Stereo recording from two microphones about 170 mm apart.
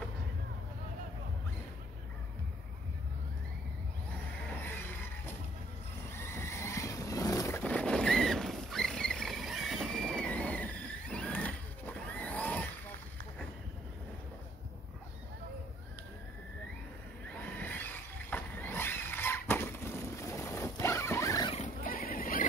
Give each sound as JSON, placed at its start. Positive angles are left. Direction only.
{"t": 6.0, "sound": "vehicle", "side_deg": 15}
{"t": 17.4, "sound": "vehicle", "side_deg": 10}
{"t": 21.8, "sound": "neigh", "side_deg": 55}